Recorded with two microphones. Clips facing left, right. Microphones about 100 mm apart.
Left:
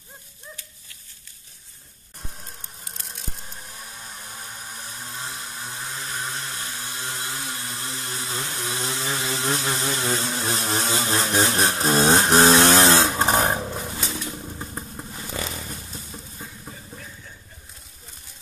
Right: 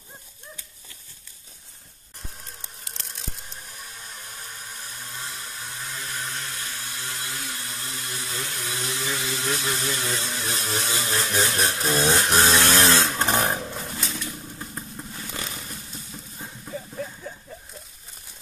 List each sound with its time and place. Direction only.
5.9 s a sound: 25° left (ahead or behind)
13.7 s roaring cats: 5° left (ahead or behind)
14.1 s vehicle: 20° left (ahead or behind)